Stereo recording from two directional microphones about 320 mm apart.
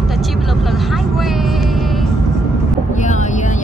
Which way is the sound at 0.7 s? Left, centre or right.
Centre.